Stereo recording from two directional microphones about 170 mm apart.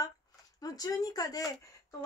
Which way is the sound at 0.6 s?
20° left (ahead or behind).